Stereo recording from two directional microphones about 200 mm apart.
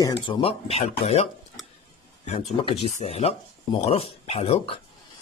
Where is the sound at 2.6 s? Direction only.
25° left (ahead or behind).